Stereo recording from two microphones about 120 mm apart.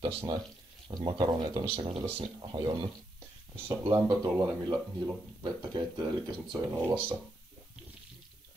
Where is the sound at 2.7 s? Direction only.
35° right (ahead or behind).